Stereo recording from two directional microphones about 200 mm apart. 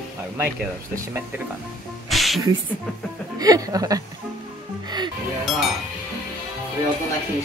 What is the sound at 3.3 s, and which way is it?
Speech, 20° right (ahead or behind).